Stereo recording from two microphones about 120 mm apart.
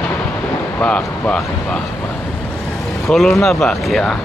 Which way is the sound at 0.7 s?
10° left (ahead or behind).